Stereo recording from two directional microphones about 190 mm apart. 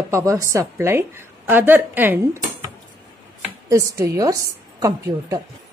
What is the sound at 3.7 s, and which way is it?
Speech, 15° right (ahead or behind).